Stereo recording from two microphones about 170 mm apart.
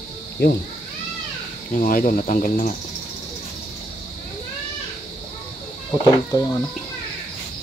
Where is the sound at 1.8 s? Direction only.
50° left (ahead or behind).